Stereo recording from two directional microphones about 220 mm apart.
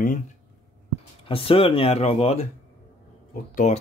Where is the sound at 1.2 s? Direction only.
25° left (ahead or behind).